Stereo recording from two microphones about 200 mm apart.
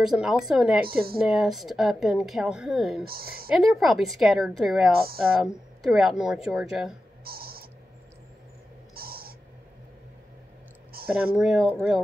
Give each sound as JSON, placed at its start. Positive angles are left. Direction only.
{"t": 0.0, "sound": "speech", "side_deg": 0}
{"t": 0.8, "sound": "speech", "side_deg": -50}
{"t": 1.2, "sound": "speech", "side_deg": 0}
{"t": 3.1, "sound": "speech", "side_deg": -50}
{"t": 3.5, "sound": "speech", "side_deg": 0}
{"t": 7.2, "sound": "a sound", "side_deg": -50}
{"t": 8.9, "sound": "cat", "side_deg": -50}
{"t": 10.9, "sound": "a sound", "side_deg": -50}
{"t": 11.3, "sound": "speech", "side_deg": 0}